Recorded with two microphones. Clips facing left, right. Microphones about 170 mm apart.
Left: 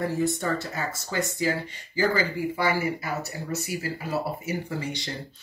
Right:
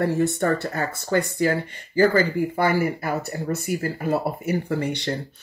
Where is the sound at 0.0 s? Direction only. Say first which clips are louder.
Right 5 dB; 65° right (ahead or behind).